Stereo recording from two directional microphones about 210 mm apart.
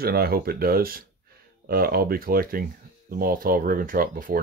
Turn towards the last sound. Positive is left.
turn(degrees=-40)  # may be behind; listen again after turning